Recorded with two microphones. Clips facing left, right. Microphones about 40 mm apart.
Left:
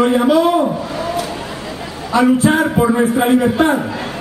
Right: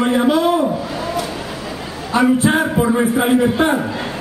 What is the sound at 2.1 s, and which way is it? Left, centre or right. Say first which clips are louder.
Speech: left 2 dB; right.